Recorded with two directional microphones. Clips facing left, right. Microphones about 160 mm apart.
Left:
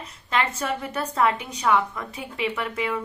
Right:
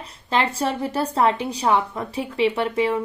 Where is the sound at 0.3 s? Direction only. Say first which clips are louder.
Right 3 dB; 30° right (ahead or behind).